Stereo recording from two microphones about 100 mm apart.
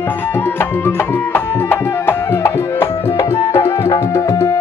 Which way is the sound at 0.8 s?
20° left (ahead or behind).